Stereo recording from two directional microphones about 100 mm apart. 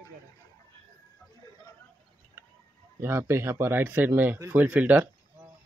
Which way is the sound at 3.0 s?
25° right (ahead or behind).